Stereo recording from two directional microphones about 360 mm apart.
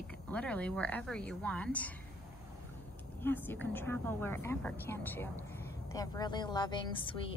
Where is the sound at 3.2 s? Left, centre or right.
Centre.